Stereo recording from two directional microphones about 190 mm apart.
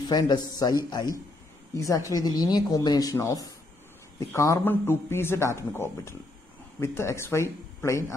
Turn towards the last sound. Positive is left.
turn(degrees=15)  # may be behind; listen again after turning